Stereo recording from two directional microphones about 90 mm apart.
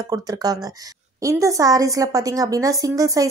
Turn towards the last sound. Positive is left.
turn(degrees=-40)  # may be behind; listen again after turning